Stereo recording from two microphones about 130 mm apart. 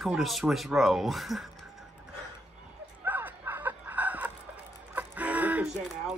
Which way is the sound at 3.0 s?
15° right (ahead or behind).